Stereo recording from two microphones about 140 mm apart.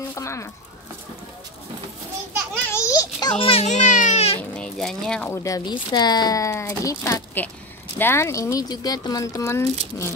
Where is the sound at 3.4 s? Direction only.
45° left (ahead or behind).